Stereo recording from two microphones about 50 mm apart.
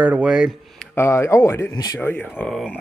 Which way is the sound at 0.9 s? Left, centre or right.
Left.